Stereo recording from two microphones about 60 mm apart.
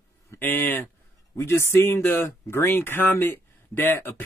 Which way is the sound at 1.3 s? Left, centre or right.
Left.